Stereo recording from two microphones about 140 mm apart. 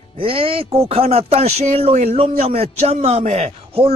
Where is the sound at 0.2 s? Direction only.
40° right (ahead or behind).